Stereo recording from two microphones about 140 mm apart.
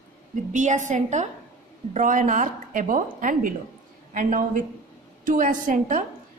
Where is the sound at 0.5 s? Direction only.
60° right (ahead or behind).